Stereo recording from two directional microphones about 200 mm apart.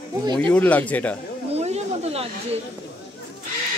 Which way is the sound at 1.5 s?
30° right (ahead or behind).